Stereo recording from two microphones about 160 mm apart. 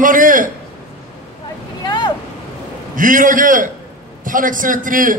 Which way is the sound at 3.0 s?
55° right (ahead or behind).